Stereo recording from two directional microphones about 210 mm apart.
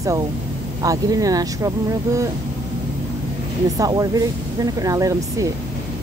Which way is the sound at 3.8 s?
15° right (ahead or behind).